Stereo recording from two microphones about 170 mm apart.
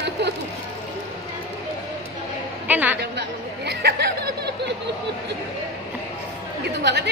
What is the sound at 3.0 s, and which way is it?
Chatter, 80° right.